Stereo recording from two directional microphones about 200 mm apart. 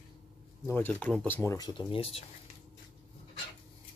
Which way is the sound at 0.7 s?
10° left (ahead or behind).